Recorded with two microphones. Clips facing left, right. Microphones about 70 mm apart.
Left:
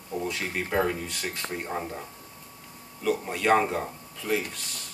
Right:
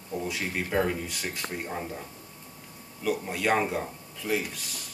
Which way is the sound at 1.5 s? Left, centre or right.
Centre.